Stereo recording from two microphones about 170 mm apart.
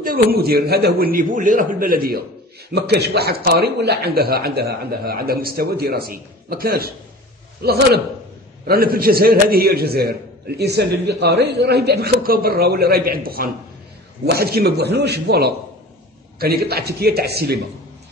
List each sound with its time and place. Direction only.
0.0 s a man's voice: 60° right (ahead or behind)
2.7 s a man's voice: 75° right (ahead or behind)